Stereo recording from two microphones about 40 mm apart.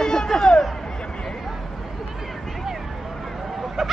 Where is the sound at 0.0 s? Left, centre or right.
Centre.